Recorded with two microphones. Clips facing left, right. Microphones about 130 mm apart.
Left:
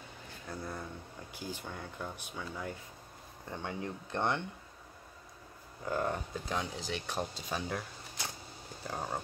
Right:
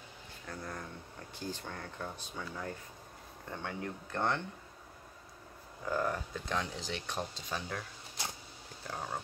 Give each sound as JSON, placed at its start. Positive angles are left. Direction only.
{"t": 0.5, "sound": "speech", "side_deg": 10}
{"t": 5.9, "sound": "speech", "side_deg": 20}
{"t": 6.3, "sound": "speech", "side_deg": 10}
{"t": 8.9, "sound": "speech", "side_deg": 15}